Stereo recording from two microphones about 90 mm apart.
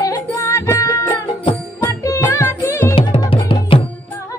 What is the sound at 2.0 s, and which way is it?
Music, 35° left (ahead or behind).